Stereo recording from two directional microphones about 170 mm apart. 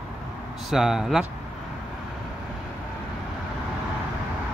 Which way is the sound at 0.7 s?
Centre (ahead or behind).